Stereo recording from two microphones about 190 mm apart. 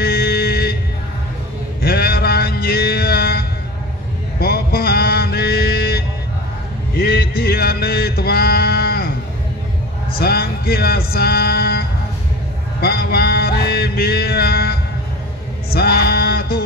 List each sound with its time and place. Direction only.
0.0 s music: 55° left (ahead or behind)
1.8 s mantra: 55° left (ahead or behind)
7.0 s male singing: 55° left (ahead or behind)
10.1 s music: 55° left (ahead or behind)
12.8 s music: 55° left (ahead or behind)
15.7 s a sound: 55° left (ahead or behind)